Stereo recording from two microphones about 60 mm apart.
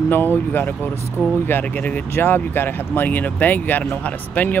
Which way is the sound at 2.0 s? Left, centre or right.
Left.